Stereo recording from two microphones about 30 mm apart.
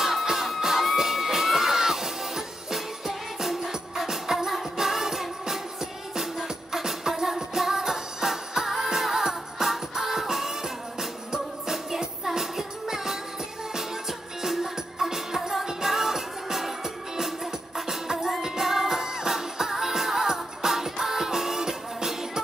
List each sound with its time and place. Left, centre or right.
0.0 s music: centre